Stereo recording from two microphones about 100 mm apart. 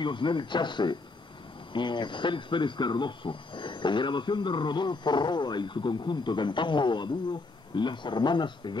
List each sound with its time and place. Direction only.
0.0 s speech: 50° left (ahead or behind)